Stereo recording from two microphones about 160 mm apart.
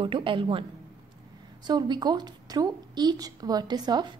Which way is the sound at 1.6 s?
25° right (ahead or behind).